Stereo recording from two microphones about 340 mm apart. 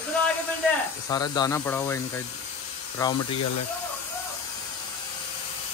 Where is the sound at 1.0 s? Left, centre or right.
Centre.